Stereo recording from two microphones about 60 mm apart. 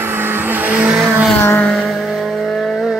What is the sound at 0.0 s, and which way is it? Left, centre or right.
Vehicle, right.